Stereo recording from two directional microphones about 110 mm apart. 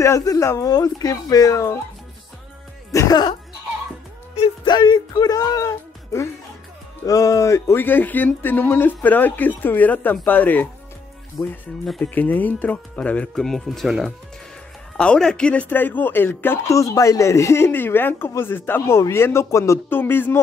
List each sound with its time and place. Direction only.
0.0 s speech: 30° left (ahead or behind)
2.9 s speech: 35° left (ahead or behind)
4.6 s speech: 40° left (ahead or behind); by 10.7 s 15° left (ahead or behind)
11.3 s speech: centre (ahead or behind)
12.0 s speech: 15° left (ahead or behind)